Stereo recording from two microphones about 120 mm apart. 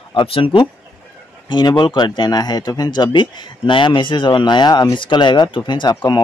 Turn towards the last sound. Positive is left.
turn(degrees=40)  # may be behind; listen again after turning